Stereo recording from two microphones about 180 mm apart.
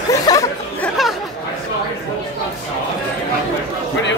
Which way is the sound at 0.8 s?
Centre (ahead or behind).